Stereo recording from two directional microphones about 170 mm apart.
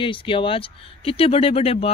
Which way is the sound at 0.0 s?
30° left (ahead or behind).